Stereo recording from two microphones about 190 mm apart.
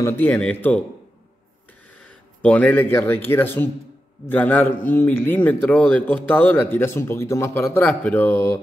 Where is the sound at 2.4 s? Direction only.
5° left (ahead or behind).